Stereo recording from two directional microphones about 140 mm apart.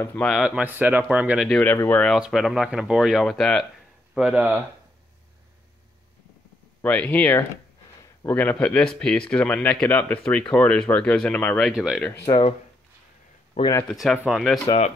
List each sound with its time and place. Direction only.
0.0 s speech: 10° left (ahead or behind)
0.4 s speech: 10° right (ahead or behind)
1.5 s speech: 10° left (ahead or behind)
2.1 s speech: 5° right (ahead or behind)
4.1 s speech: 5° right (ahead or behind)
6.8 s speech: 10° left (ahead or behind)
11.7 s speech: 5° right (ahead or behind)
12.0 s speech: 15° left (ahead or behind)
12.3 s speech: 40° left (ahead or behind)
13.8 s speech: centre (ahead or behind)